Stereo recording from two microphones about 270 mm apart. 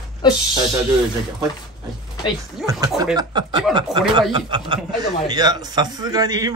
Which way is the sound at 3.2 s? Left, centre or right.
Centre.